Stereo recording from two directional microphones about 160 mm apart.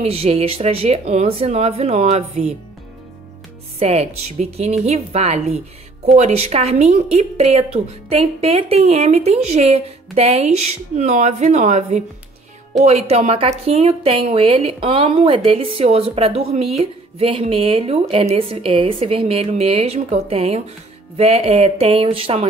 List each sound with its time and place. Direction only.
0.0 s speech: 35° right (ahead or behind)
3.8 s speech: 40° right (ahead or behind)